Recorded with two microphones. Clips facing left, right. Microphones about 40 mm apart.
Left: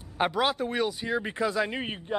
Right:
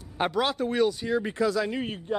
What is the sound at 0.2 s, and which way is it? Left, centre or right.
Speech, centre.